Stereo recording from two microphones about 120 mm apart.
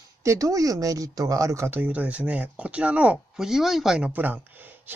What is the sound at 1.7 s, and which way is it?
Speech, 15° right (ahead or behind).